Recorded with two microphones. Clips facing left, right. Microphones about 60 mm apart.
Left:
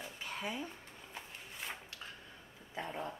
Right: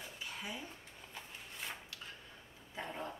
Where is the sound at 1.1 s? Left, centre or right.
Centre.